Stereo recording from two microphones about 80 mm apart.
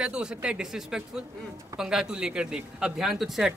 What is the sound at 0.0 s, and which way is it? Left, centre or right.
Speech, centre.